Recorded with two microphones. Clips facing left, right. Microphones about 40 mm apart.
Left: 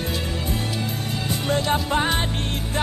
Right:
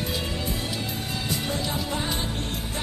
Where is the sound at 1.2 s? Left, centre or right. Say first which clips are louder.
Left 7 dB; left.